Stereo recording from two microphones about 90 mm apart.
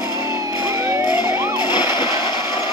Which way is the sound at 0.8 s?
30° right (ahead or behind).